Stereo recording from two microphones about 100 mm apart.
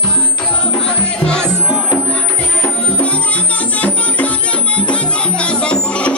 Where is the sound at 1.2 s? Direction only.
10° left (ahead or behind).